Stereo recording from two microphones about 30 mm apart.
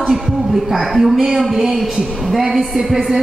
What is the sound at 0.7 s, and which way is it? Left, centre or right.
A woman's voice, centre.